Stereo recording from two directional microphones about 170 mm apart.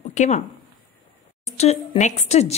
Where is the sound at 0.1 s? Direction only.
45° left (ahead or behind).